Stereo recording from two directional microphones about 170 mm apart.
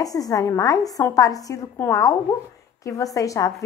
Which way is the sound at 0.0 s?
20° left (ahead or behind).